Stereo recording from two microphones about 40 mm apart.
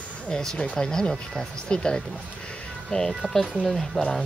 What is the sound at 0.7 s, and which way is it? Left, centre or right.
Speech, centre.